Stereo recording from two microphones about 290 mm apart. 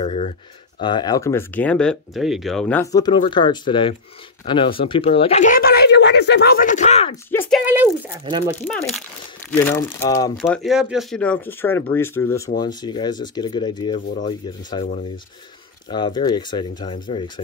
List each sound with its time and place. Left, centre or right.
0.0 s speech: left
7.2 s speech: centre
7.6 s speech: centre
9.5 s speech: centre
10.3 s speech: centre
15.9 s speech: centre